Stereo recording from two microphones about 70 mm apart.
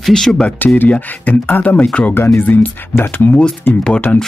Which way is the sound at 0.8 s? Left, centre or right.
Left.